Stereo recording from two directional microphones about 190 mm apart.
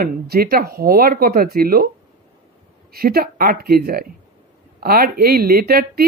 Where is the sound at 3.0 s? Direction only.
55° right (ahead or behind).